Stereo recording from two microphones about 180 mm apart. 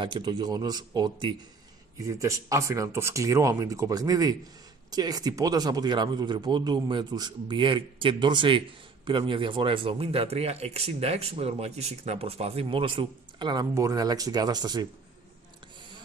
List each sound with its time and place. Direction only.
0.0 s speech: 25° right (ahead or behind)